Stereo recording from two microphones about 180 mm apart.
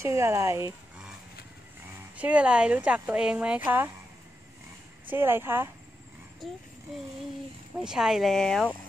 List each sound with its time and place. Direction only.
0.0 s speech: 15° right (ahead or behind)
2.1 s speech: 5° right (ahead or behind)
5.1 s speech: 10° right (ahead or behind)
6.4 s speech: centre (ahead or behind)
7.8 s speech: 5° right (ahead or behind)